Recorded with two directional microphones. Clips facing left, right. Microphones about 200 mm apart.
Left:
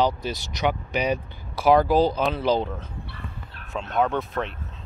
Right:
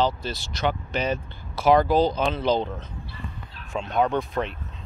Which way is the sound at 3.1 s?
60° left (ahead or behind).